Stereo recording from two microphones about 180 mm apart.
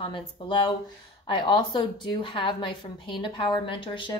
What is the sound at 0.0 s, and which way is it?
A woman's voice, 30° left (ahead or behind).